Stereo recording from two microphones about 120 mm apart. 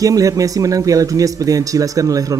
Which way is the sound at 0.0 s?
30° right (ahead or behind).